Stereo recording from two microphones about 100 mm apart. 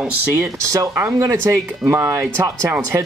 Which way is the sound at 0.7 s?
30° right (ahead or behind).